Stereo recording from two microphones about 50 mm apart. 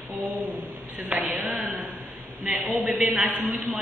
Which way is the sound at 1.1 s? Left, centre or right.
Right.